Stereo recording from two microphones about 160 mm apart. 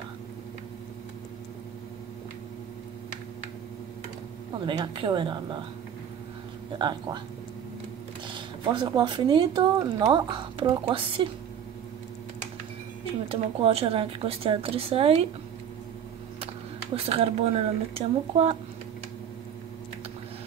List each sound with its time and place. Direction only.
4.6 s speech: 30° right (ahead or behind)
6.8 s speech: 25° right (ahead or behind)
8.3 s speech: 30° right (ahead or behind)
13.3 s speech: 35° right (ahead or behind)
16.9 s speech: 40° right (ahead or behind)